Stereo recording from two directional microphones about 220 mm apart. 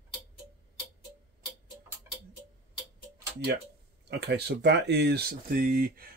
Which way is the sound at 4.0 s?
50° right (ahead or behind).